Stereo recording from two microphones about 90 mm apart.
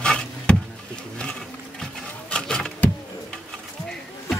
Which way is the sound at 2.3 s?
10° left (ahead or behind).